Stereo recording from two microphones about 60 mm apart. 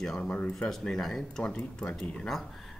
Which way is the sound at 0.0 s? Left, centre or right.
Centre.